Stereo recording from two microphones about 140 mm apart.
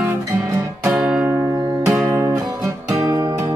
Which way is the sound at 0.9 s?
5° right (ahead or behind).